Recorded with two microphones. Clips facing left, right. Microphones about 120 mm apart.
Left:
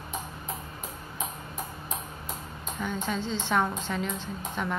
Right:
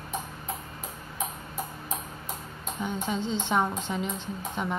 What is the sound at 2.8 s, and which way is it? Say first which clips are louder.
Speech: right 1 dB; 20° right (ahead or behind).